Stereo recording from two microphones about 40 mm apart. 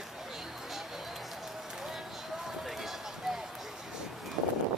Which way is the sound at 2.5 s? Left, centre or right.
Centre.